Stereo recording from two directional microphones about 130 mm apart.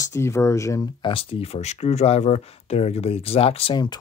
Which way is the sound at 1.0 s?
45° left (ahead or behind).